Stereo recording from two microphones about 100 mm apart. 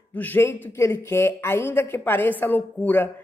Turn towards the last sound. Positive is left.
turn(degrees=20)  # may be behind; listen again after turning